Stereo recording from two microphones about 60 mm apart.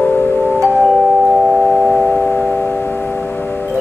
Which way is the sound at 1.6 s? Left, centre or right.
Left.